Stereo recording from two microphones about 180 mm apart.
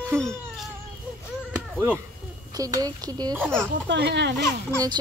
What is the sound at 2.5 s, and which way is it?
A woman's voice, 20° right (ahead or behind).